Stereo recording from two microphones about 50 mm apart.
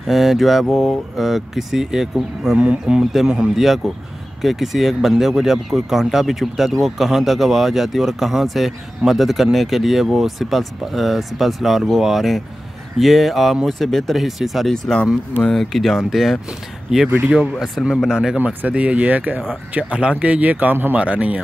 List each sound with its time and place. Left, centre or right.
0.0 s speech: centre
2.5 s speech: right
3.5 s speech: centre
16.9 s speech: centre
18.0 s speech: centre
18.4 s speech: right
18.7 s speech: right
20.9 s speech: right